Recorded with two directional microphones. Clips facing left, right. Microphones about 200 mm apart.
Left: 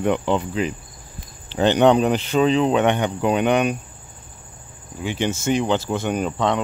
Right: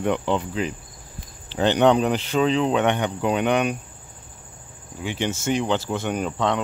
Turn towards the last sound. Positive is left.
turn(degrees=15)  # may be behind; listen again after turning